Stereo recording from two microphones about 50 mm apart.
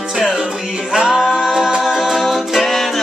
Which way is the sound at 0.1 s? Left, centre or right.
Centre.